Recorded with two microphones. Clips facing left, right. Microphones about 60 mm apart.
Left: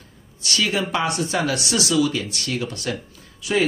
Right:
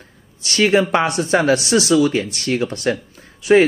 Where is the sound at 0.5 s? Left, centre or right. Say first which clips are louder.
Right 8 dB; right.